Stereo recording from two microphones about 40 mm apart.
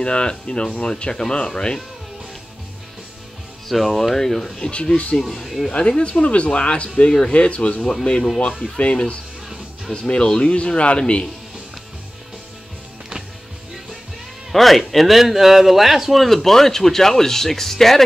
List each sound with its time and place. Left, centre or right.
0.0 s speech: left
3.6 s speech: centre
4.6 s speech: left
5.2 s speech: centre
5.7 s speech: left
7.1 s speech: centre
7.3 s speech: left
7.8 s speech: centre
14.5 s speech: centre